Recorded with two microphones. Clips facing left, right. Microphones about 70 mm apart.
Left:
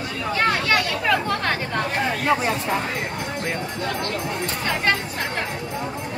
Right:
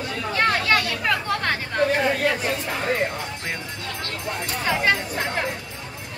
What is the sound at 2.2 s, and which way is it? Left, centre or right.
Speech, left.